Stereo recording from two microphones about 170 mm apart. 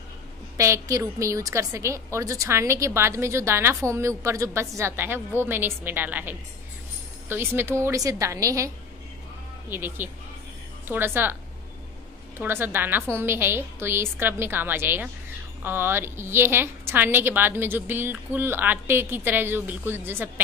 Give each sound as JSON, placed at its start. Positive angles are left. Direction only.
{"t": 0.6, "sound": "a woman's voice", "side_deg": -20}
{"t": 12.4, "sound": "a woman's voice", "side_deg": -10}